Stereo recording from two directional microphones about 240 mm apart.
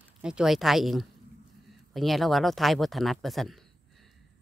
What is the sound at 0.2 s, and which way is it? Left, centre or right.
Speech, centre.